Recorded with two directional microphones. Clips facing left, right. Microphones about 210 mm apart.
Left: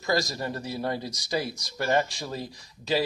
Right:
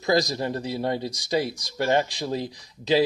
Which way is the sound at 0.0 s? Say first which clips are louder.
Right 5 dB; 20° right (ahead or behind).